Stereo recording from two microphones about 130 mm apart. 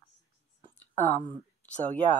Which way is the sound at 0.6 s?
35° right (ahead or behind).